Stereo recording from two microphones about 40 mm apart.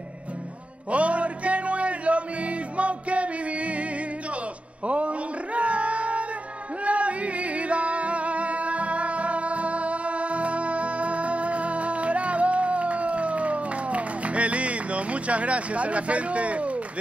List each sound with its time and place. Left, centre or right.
0.9 s music: right
4.8 s a sound: right
6.8 s music: right